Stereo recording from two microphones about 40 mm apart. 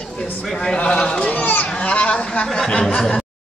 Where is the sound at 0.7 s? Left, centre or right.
Left.